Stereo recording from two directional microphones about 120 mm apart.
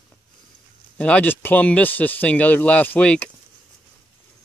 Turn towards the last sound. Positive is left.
turn(degrees=10)  # may be behind; listen again after turning